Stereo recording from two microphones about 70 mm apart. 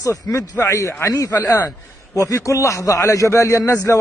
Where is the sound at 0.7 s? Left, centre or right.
Left.